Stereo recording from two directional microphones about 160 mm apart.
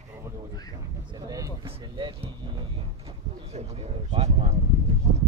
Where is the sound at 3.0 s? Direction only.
40° right (ahead or behind).